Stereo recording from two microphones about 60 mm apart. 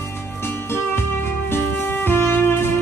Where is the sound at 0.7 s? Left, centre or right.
Left.